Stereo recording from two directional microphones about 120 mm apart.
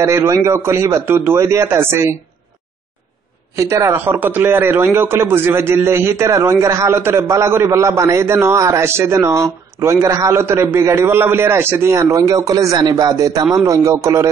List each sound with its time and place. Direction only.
0.0 s a man's voice: 25° right (ahead or behind)
3.5 s a man's voice: 25° right (ahead or behind)